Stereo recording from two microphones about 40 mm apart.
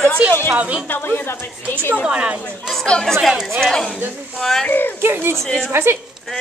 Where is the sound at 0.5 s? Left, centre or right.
Right.